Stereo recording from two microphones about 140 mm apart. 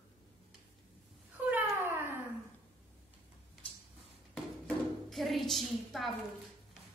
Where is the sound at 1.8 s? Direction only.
15° right (ahead or behind).